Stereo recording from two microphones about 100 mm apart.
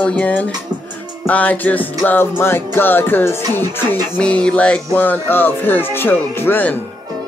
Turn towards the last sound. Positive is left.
turn(degrees=20)  # may be behind; listen again after turning